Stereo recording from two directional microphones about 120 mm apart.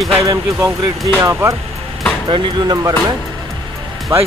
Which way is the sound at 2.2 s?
40° right (ahead or behind).